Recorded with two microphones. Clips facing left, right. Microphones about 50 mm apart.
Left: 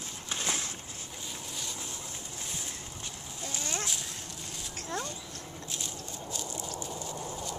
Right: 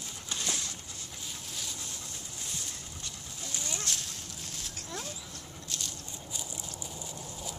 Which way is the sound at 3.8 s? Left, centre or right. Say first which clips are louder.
Left 1 dB; centre.